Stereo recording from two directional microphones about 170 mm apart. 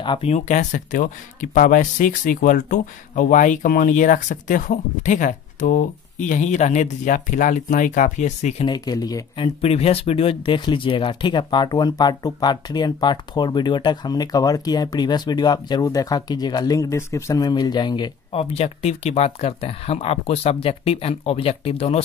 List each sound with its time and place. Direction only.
0.0 s speech: 35° left (ahead or behind)
8.6 s speech: 25° left (ahead or behind)
9.6 s speech: 35° left (ahead or behind)